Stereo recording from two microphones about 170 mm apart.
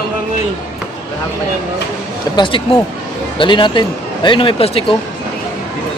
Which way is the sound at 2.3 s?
30° left (ahead or behind).